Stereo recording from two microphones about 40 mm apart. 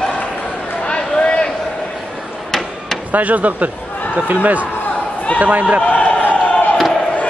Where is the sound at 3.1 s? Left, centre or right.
Right.